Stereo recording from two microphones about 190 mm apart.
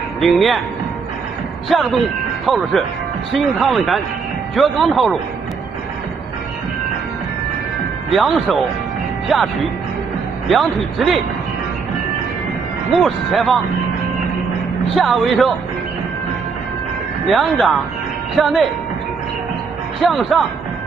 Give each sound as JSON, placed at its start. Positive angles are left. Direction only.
{"t": 0.2, "sound": "speech", "side_deg": 0}
{"t": 1.7, "sound": "speech", "side_deg": 0}
{"t": 8.1, "sound": "speech", "side_deg": 0}
{"t": 10.5, "sound": "speech", "side_deg": 0}
{"t": 13.0, "sound": "speech", "side_deg": 0}
{"t": 15.0, "sound": "speech", "side_deg": 0}
{"t": 17.3, "sound": "speech", "side_deg": 0}
{"t": 20.0, "sound": "speech", "side_deg": 0}